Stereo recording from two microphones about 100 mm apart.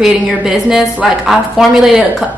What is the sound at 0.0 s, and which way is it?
A woman's voice, 5° right (ahead or behind).